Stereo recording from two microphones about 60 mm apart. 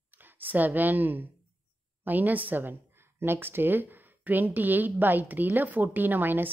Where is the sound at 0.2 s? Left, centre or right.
Right.